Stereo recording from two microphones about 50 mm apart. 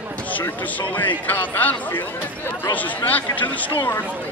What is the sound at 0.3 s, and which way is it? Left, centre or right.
Speech, left.